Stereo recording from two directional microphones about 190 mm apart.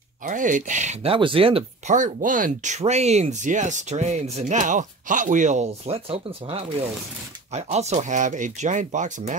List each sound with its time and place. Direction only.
0.2 s speech: 45° right (ahead or behind)
2.0 s speech: 45° right (ahead or behind)